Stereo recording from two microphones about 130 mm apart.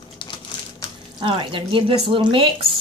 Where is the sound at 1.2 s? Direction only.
40° right (ahead or behind).